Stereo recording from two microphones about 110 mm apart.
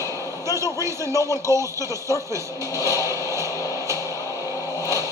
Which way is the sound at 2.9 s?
30° right (ahead or behind).